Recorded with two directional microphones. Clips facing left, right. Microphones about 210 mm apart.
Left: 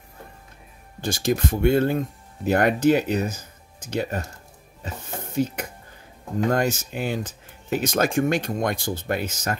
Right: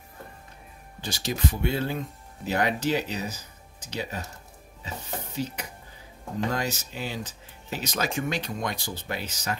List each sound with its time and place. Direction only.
1.0 s speech: 50° left (ahead or behind)
4.8 s dishes: 50° left (ahead or behind)
6.5 s speech: 50° left (ahead or behind)